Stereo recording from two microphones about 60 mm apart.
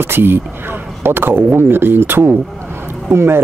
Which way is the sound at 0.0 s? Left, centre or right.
Right.